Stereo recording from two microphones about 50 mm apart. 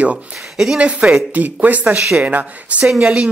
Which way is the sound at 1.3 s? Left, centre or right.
Right.